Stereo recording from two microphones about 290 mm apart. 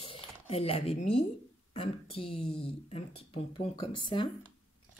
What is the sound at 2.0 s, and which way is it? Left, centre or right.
Speech, centre.